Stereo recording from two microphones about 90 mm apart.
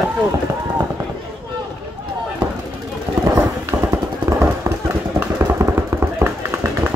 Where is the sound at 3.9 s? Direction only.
30° right (ahead or behind).